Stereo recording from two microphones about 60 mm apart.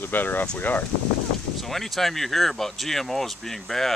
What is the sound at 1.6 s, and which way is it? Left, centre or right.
Speech, centre.